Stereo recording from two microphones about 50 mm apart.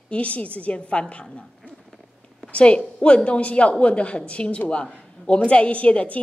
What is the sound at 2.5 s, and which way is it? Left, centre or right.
A woman's voice, left.